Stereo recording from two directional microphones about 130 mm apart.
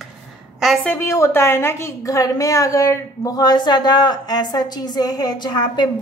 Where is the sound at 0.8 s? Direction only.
15° left (ahead or behind).